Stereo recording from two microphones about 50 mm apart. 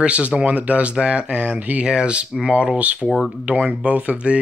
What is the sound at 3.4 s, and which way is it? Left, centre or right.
Speech, right.